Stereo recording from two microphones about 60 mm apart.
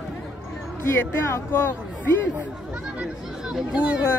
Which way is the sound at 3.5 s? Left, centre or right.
Centre.